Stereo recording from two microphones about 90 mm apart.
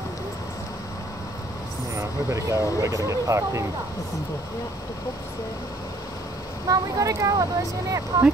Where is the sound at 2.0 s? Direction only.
35° right (ahead or behind).